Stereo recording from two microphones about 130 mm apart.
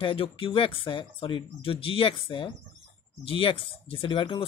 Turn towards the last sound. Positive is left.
turn(degrees=40)  # may be behind; listen again after turning